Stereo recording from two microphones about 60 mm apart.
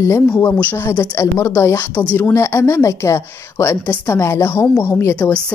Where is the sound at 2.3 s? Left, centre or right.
Left.